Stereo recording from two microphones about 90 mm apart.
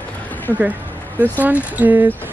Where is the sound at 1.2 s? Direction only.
20° right (ahead or behind).